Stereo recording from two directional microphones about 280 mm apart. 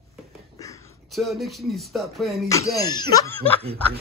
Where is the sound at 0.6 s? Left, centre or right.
Centre.